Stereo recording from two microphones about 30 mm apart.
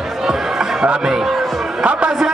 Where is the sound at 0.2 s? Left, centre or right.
Centre.